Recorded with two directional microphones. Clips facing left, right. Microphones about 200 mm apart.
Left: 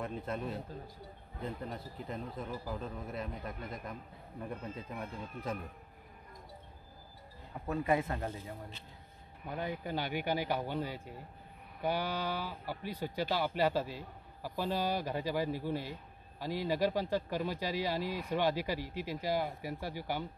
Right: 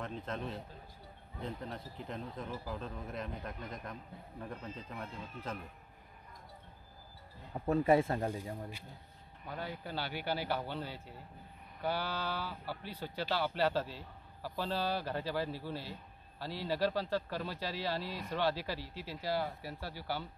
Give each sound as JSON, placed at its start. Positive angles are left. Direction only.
{"t": 0.0, "sound": "speech", "side_deg": 10}
{"t": 7.6, "sound": "speech", "side_deg": -30}
{"t": 8.3, "sound": "speech", "side_deg": -15}
{"t": 9.5, "sound": "speech", "side_deg": 15}